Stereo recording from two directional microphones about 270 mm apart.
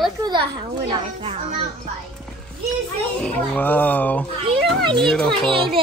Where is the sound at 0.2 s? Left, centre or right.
Centre.